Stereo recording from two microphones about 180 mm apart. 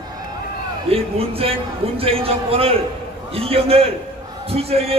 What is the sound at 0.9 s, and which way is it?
A man's voice, 30° right (ahead or behind).